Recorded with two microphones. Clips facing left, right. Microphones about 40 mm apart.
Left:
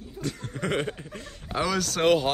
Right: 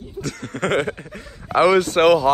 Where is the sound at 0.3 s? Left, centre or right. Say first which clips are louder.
Right 8 dB; right.